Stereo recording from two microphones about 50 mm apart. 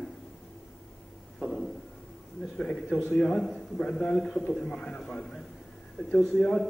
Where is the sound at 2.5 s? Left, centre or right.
Centre.